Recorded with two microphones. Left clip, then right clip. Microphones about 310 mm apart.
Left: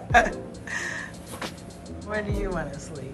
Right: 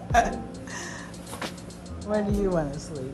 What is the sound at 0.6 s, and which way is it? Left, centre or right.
Music, centre.